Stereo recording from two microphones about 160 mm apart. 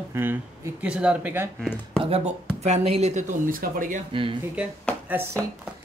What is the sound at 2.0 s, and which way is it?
Speech, 40° right (ahead or behind).